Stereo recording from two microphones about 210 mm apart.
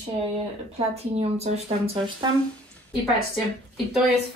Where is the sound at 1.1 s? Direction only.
30° right (ahead or behind).